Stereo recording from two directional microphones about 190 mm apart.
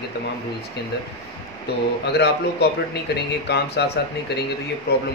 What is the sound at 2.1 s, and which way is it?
Speech, 60° left (ahead or behind).